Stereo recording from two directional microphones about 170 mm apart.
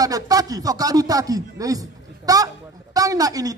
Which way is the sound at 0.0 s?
20° right (ahead or behind).